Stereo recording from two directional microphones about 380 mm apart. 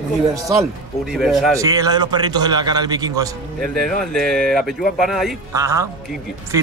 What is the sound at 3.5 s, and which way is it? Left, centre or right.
Speech, centre.